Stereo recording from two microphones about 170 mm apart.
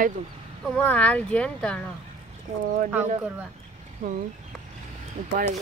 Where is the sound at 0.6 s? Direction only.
5° left (ahead or behind).